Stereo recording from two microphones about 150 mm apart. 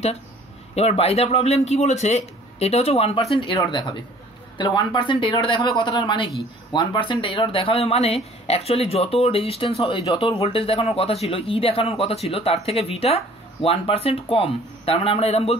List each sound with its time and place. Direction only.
0.7 s a man's voice: 40° left (ahead or behind)